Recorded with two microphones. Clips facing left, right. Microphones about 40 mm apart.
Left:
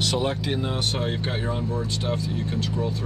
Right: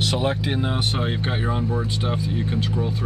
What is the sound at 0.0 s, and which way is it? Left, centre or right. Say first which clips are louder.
Speech: right 2 dB; centre.